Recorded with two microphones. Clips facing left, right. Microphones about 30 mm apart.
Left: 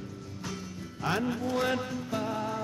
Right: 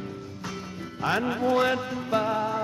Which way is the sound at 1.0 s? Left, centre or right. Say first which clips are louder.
Right 5 dB; right.